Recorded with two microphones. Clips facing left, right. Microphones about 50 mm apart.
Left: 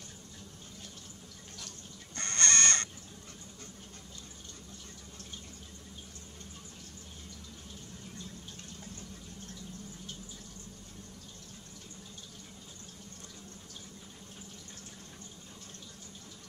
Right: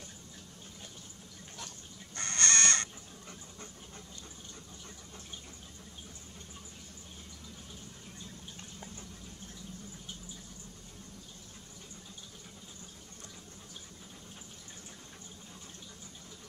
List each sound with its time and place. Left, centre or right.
2.1 s chicken: centre